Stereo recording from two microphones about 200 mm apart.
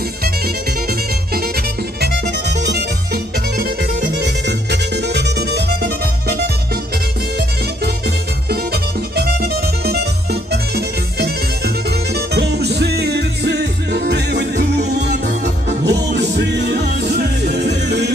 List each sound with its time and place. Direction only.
0.8 s music: 50° right (ahead or behind)
9.1 s music: 55° right (ahead or behind)